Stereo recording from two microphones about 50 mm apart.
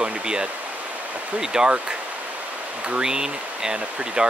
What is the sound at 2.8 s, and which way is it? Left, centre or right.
Speech, centre.